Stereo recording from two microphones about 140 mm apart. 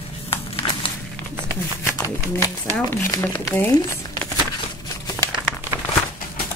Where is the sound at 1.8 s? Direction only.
20° left (ahead or behind).